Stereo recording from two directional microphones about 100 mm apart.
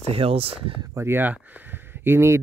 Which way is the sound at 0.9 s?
25° right (ahead or behind).